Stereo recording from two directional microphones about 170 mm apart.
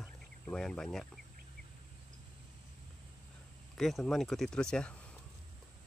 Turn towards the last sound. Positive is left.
turn(degrees=5)  # may be behind; listen again after turning